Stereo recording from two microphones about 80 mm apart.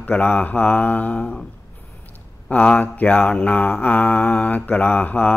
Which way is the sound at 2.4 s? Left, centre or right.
Centre.